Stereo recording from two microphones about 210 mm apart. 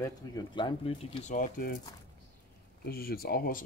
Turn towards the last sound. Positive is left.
turn(degrees=45)  # may be behind; listen again after turning